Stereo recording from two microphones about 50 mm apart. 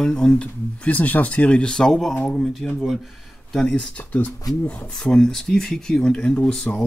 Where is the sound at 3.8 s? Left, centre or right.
Left.